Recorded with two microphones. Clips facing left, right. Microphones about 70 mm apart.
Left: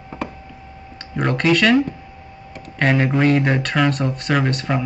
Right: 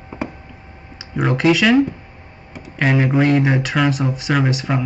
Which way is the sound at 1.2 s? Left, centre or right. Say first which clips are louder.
Right 1 dB; centre.